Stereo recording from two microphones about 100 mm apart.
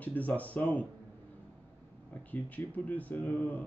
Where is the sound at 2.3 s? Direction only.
15° left (ahead or behind).